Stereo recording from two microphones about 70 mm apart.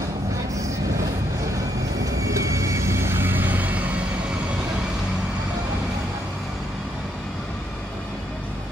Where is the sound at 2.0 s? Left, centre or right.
Right.